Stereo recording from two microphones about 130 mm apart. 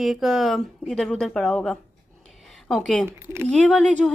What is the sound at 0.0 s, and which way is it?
A woman's voice, centre (ahead or behind).